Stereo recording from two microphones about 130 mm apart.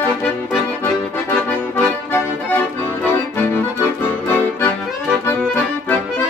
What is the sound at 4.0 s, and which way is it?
Accordion, 15° left (ahead or behind).